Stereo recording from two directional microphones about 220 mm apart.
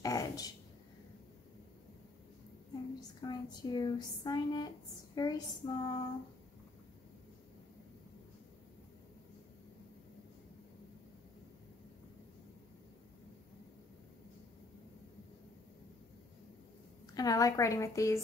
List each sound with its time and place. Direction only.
0.0 s a sound: 15° left (ahead or behind)
3.0 s speech: 20° left (ahead or behind)
17.1 s speech: 15° left (ahead or behind)